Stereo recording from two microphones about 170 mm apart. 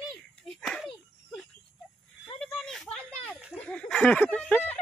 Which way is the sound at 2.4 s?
5° left (ahead or behind).